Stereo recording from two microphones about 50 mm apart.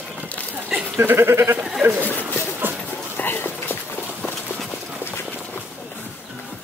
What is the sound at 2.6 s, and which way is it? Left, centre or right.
Dog, right.